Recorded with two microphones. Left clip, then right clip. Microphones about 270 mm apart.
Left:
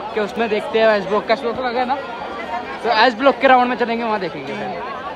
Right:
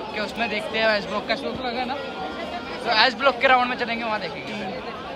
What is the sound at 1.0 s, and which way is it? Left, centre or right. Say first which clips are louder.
Speech: left 8 dB; centre.